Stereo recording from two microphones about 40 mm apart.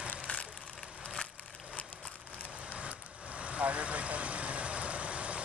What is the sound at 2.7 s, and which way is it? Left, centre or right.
Vehicle, right.